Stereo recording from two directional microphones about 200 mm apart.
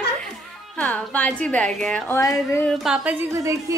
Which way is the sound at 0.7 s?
5° left (ahead or behind).